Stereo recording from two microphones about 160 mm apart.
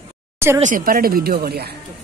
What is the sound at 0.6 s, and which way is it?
Speech, 60° right (ahead or behind).